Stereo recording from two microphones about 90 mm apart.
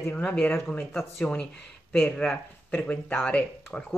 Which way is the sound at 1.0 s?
5° left (ahead or behind).